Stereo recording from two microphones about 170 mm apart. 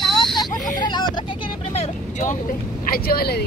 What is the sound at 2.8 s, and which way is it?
Speech, 60° left (ahead or behind).